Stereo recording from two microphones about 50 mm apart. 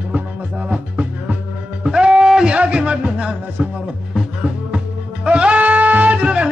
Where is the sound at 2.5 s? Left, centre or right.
Right.